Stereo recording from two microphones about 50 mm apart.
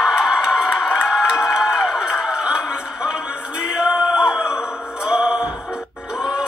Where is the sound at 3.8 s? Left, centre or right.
Centre.